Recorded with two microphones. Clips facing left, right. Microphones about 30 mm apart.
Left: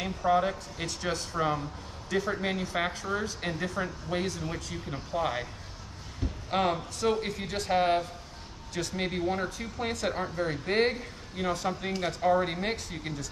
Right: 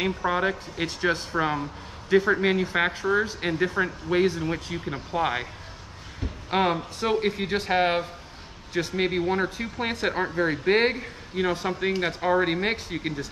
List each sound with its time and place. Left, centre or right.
0.0 s speech: right
6.5 s speech: right